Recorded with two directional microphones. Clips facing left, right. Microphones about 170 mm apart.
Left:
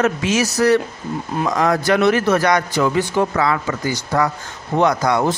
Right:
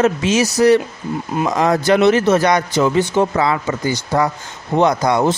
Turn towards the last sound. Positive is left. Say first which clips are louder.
# right 2 dB
turn(degrees=-25)  # may be behind; listen again after turning